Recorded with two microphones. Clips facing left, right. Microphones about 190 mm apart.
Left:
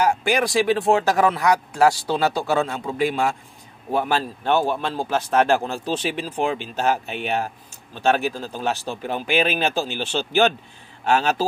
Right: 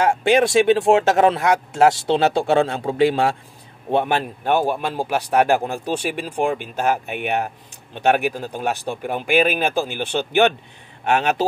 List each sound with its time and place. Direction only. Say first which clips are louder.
0.0 s a man's voice: right 4 dB; 25° right (ahead or behind)
6.4 s speech: right 2 dB; 50° right (ahead or behind)
7.9 s a man's voice: right 2 dB; 15° right (ahead or behind)
9.7 s speech: right 2 dB; 50° right (ahead or behind)